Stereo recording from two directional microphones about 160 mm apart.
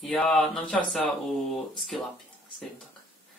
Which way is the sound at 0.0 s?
Centre (ahead or behind).